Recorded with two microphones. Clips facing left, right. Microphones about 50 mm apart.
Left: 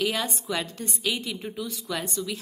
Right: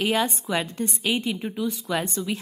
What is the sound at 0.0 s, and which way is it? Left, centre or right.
A woman's voice, right.